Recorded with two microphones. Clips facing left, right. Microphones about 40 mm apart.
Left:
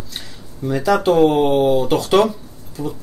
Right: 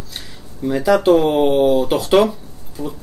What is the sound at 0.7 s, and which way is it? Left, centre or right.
Speech, centre.